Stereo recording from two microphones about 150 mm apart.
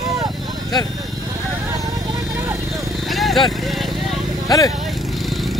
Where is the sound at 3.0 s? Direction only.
Centre (ahead or behind).